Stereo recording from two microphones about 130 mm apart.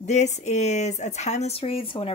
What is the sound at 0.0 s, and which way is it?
Speech, 65° left (ahead or behind).